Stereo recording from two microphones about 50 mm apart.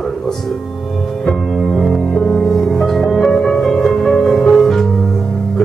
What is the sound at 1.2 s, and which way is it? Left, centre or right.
Music, centre.